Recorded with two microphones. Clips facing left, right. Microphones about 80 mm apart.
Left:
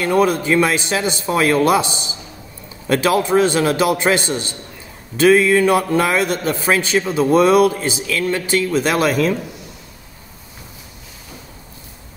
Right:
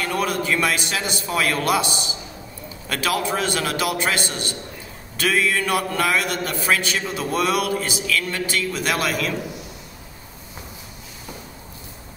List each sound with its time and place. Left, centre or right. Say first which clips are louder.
0.0 s a man's voice: left 7 dB; left